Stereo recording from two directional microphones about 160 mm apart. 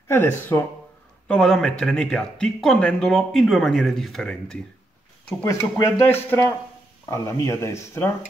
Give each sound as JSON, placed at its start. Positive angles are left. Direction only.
{"t": 0.1, "sound": "speech", "side_deg": 15}
{"t": 5.4, "sound": "speech", "side_deg": 15}